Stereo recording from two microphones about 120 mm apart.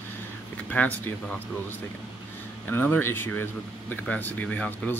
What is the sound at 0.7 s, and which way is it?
Speech, 15° left (ahead or behind).